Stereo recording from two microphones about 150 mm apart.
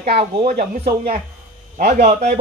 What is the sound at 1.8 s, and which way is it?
Speech, 70° right (ahead or behind).